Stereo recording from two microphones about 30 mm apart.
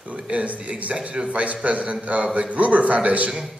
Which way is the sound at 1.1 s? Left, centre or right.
Right.